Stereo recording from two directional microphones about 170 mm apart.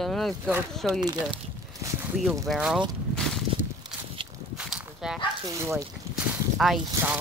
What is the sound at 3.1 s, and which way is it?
Walk, 5° left (ahead or behind).